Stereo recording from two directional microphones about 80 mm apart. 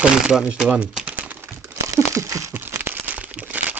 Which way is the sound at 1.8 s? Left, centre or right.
Right.